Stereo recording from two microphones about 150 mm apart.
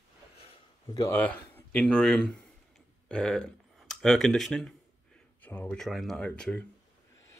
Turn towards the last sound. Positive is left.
turn(degrees=10)  # may be behind; listen again after turning